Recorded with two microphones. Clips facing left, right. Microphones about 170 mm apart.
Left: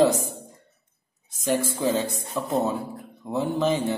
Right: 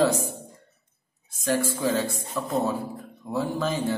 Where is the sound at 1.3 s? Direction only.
20° left (ahead or behind).